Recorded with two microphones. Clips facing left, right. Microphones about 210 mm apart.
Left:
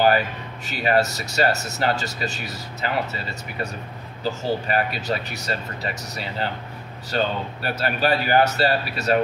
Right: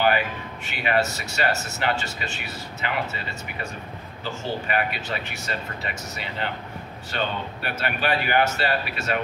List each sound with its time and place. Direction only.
0.7 s speech: 40° left (ahead or behind)
4.2 s speech: 40° left (ahead or behind)